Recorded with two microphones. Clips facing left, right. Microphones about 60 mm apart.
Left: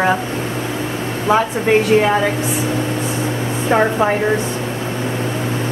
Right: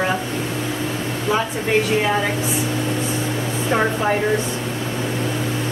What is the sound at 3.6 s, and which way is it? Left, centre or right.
Speech, left.